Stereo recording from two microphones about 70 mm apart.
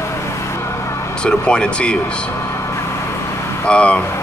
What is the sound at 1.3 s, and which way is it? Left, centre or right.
Speech, centre.